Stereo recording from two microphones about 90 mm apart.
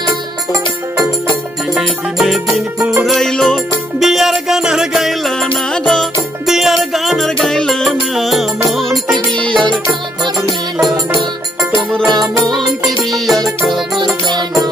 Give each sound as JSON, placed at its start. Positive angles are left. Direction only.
{"t": 1.7, "sound": "music", "side_deg": 0}
{"t": 9.7, "sound": "music", "side_deg": -55}
{"t": 10.8, "sound": "music", "side_deg": 0}